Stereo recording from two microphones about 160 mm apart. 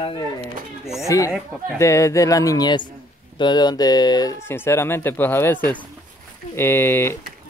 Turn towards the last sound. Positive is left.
turn(degrees=15)  # may be behind; listen again after turning